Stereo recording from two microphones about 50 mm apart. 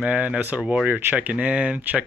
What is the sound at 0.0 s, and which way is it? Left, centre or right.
Speech, right.